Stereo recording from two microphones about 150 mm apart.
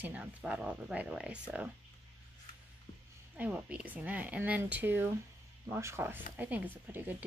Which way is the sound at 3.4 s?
10° right (ahead or behind).